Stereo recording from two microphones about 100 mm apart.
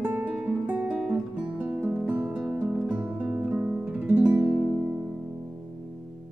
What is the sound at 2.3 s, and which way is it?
Music, 10° right (ahead or behind).